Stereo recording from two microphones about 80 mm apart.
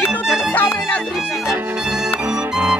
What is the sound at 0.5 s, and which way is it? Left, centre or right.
Music, left.